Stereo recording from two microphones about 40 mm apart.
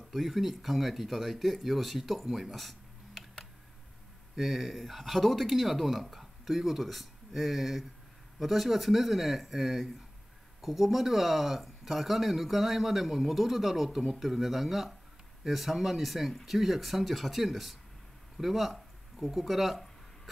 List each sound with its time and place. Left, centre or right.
0.1 s speech: centre
4.4 s speech: centre